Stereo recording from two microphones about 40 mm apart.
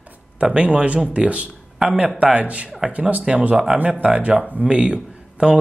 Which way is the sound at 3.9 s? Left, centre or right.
Right.